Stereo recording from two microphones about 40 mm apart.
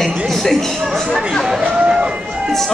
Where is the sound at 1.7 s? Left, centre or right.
Centre.